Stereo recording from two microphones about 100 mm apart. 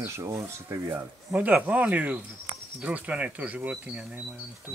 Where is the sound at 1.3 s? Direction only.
15° right (ahead or behind).